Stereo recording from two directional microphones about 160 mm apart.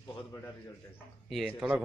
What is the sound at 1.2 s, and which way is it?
Speech, 5° right (ahead or behind).